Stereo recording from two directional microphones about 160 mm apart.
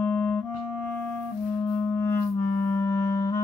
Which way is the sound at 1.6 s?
15° left (ahead or behind).